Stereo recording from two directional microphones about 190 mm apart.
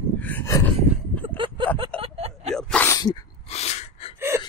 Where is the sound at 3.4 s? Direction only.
35° left (ahead or behind).